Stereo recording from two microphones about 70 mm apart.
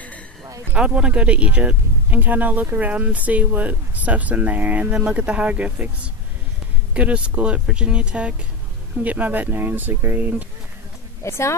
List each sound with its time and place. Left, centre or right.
0.7 s speech: centre
6.9 s speech: centre
11.2 s a woman's voice: left